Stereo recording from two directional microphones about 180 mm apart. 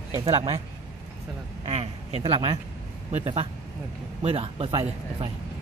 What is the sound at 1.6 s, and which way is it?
Speech, 35° right (ahead or behind).